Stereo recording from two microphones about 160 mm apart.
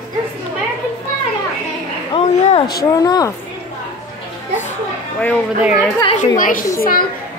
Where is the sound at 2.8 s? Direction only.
20° left (ahead or behind).